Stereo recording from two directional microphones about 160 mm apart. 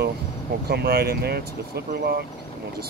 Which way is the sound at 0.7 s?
85° right.